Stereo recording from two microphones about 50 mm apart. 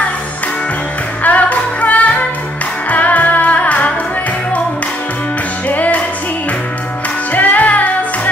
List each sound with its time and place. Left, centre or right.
1.2 s music: left
5.7 s music: left
7.3 s music: left